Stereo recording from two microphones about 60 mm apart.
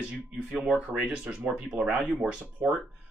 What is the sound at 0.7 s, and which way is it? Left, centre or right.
Speech, right.